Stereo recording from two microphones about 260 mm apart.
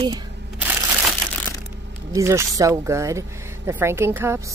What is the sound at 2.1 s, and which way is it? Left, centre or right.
Speech, centre.